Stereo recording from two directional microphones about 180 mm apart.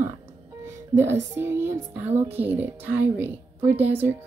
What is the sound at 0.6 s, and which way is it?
Music, 15° right (ahead or behind).